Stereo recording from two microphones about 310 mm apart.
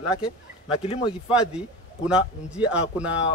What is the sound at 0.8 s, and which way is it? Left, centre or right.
Speech, centre.